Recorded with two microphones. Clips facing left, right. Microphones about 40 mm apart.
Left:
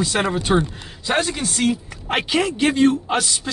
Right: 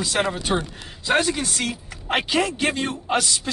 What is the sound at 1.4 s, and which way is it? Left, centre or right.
Speech, centre.